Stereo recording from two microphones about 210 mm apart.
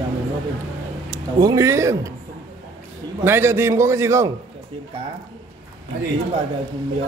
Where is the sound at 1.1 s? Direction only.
15° right (ahead or behind).